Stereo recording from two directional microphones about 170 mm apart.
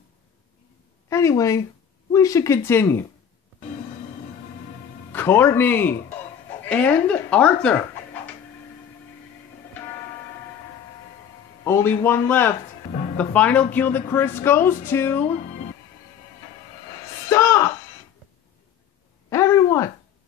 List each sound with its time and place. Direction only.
1.0 s speech: 15° left (ahead or behind)
5.1 s speech: 10° left (ahead or behind)
11.6 s speech: 15° left (ahead or behind)
17.3 s music: 15° left (ahead or behind)
19.2 s a sound: 15° left (ahead or behind)